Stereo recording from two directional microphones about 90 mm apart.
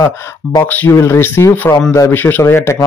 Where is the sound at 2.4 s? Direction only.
30° left (ahead or behind).